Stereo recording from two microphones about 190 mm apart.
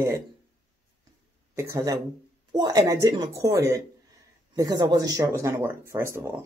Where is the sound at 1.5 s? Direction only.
15° right (ahead or behind).